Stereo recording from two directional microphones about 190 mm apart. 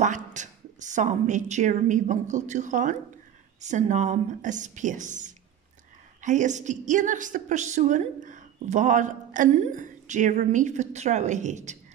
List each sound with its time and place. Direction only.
0.0 s a woman's voice: 40° right (ahead or behind)